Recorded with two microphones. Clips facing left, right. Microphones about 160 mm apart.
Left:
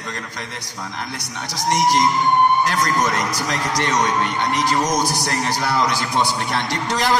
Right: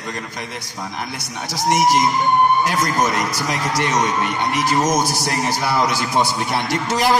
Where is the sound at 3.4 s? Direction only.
10° right (ahead or behind).